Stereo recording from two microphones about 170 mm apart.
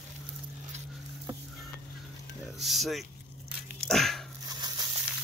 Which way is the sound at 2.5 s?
Centre (ahead or behind).